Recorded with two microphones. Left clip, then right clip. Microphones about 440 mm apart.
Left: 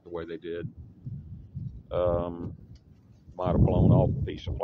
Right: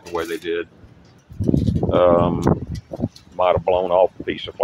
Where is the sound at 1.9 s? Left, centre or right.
Left.